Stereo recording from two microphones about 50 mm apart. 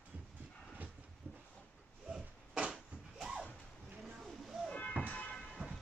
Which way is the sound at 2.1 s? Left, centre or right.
Centre.